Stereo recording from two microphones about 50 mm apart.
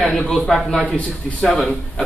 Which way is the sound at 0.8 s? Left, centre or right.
Centre.